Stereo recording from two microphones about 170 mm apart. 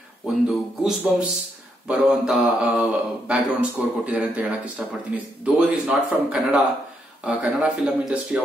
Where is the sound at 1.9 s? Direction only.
5° right (ahead or behind).